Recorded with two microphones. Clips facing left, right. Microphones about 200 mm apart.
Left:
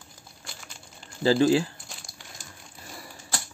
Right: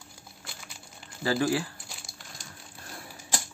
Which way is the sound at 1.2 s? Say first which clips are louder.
Left 6 dB; 25° left (ahead or behind).